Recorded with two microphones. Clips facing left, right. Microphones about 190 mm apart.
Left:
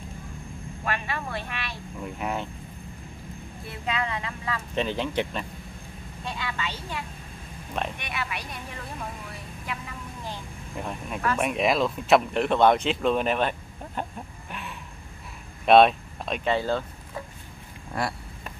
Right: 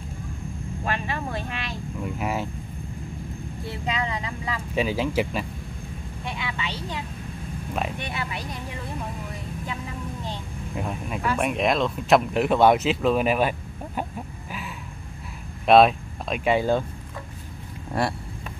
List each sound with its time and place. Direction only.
0.8 s speech: 25° right (ahead or behind)
2.0 s speech: 5° right (ahead or behind)
3.8 s speech: 20° right (ahead or behind)
4.7 s speech: 5° right (ahead or behind)
6.2 s vehicle: 15° right (ahead or behind)
8.0 s speech: 30° right (ahead or behind)
10.7 s speech: 5° right (ahead or behind)
14.5 s a sound: centre (ahead or behind)
15.6 s speech: centre (ahead or behind)
16.5 s speech: 15° right (ahead or behind)